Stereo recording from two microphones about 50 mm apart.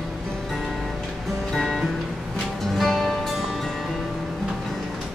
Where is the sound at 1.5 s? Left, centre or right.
Centre.